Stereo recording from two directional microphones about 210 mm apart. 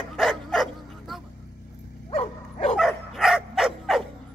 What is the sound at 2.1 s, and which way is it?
Dog, 30° left (ahead or behind).